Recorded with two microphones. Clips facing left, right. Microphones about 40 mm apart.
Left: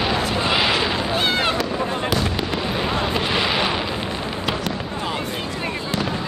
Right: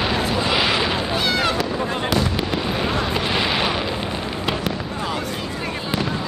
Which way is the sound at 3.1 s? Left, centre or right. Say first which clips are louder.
Even; centre.